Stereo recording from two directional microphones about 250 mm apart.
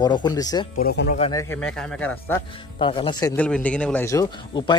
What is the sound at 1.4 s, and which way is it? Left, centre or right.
Speech, centre.